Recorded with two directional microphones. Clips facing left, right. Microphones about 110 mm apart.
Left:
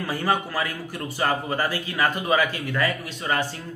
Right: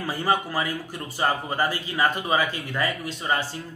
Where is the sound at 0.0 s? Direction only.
15° right (ahead or behind).